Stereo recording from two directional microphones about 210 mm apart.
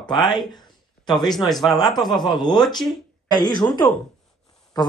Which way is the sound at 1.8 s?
20° left (ahead or behind).